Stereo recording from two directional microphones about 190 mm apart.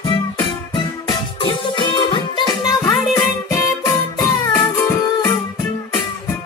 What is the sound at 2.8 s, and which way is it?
Music, 10° left (ahead or behind).